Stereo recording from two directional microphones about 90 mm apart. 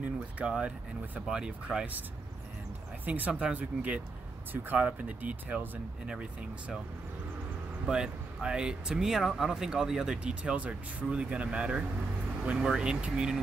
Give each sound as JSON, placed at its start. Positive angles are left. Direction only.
{"t": 0.4, "sound": "speech", "side_deg": -10}
{"t": 3.1, "sound": "speech", "side_deg": -15}
{"t": 7.8, "sound": "speech", "side_deg": -10}